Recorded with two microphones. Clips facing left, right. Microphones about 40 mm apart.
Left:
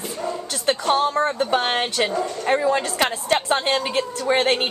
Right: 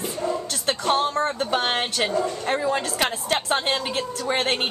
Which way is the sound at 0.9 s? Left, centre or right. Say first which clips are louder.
Left 1 dB; centre.